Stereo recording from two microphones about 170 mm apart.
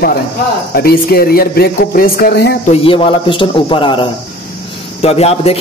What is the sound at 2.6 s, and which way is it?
Speech, 35° left (ahead or behind).